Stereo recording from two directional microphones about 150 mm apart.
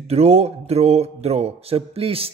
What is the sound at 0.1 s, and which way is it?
A man's voice, 45° right (ahead or behind).